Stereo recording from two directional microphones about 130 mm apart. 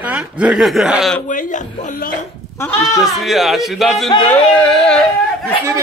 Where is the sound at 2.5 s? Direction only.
15° left (ahead or behind).